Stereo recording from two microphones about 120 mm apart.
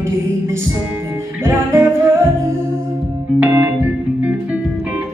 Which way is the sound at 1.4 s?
20° right (ahead or behind).